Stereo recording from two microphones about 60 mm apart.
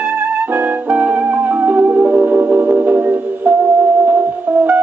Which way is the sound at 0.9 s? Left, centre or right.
Right.